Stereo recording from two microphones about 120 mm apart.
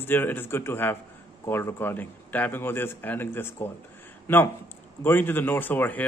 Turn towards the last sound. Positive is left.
turn(degrees=15)  # may be behind; listen again after turning